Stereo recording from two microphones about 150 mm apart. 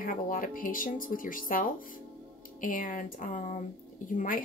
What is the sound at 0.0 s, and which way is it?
Speech, 65° left (ahead or behind).